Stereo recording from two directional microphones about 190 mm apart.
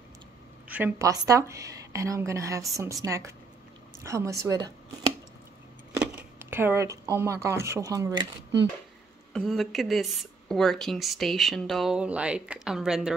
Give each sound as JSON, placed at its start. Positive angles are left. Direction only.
{"t": 0.7, "sound": "a woman's voice", "side_deg": -10}
{"t": 6.5, "sound": "a woman's voice", "side_deg": -10}
{"t": 9.3, "sound": "speech", "side_deg": 0}